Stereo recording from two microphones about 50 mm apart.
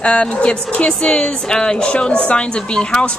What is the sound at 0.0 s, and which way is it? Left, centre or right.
A woman's voice, left.